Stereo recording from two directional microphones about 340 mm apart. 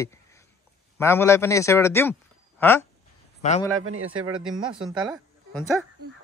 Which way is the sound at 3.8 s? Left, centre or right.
Right.